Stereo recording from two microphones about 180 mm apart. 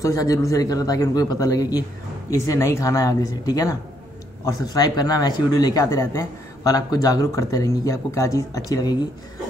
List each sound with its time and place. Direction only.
0.0 s speech: 20° left (ahead or behind)